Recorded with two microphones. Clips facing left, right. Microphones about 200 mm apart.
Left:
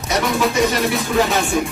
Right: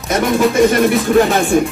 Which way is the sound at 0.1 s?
50° right (ahead or behind).